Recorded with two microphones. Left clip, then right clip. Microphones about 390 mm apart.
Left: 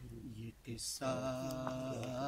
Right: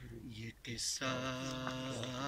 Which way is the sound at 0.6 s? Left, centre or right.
Centre.